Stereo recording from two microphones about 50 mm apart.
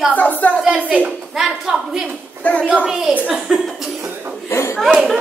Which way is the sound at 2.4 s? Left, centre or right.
Left.